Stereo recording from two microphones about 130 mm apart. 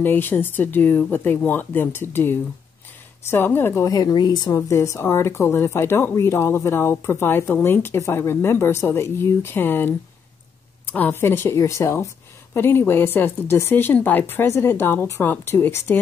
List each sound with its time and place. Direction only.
0.0 s a woman's voice: 15° left (ahead or behind)